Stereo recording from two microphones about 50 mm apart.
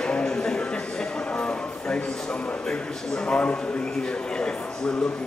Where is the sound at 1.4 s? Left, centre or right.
Left.